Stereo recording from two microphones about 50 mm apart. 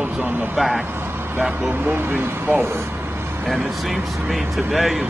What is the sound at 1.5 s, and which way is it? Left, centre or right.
Speech, right.